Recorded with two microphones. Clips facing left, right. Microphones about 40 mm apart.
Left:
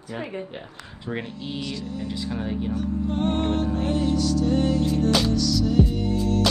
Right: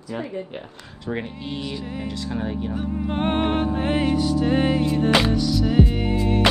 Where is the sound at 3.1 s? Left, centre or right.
Right.